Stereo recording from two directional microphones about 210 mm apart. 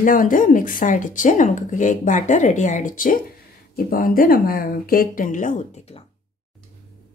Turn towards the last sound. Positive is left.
turn(degrees=30)  # may be behind; listen again after turning